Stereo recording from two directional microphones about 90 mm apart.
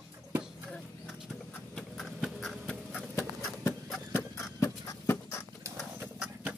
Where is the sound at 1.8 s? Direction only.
5° left (ahead or behind).